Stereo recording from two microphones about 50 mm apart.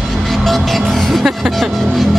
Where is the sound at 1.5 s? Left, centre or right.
Centre.